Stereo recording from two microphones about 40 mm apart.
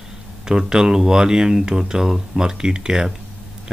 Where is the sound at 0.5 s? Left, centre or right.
Centre.